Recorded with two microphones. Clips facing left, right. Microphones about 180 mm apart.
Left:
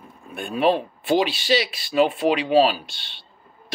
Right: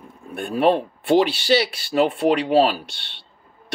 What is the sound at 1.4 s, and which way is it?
Speech, 65° right (ahead or behind).